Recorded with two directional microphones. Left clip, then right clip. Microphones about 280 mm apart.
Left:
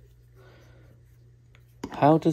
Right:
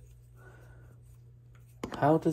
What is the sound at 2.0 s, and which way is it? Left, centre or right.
Speech, left.